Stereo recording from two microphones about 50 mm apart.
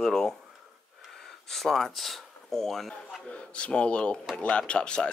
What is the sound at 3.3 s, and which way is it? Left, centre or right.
Speech, left.